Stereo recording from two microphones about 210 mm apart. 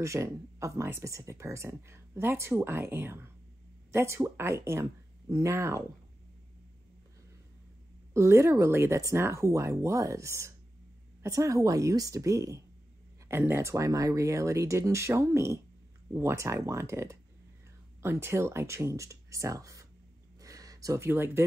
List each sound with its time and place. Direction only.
0.0 s speech: 15° right (ahead or behind)
8.1 s speech: 15° right (ahead or behind)
20.3 s a sound: 15° right (ahead or behind)